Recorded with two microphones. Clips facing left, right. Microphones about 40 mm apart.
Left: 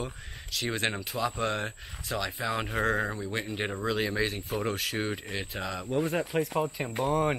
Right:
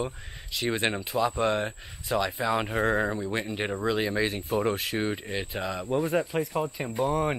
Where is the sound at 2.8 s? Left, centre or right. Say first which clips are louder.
Right 3 dB; centre.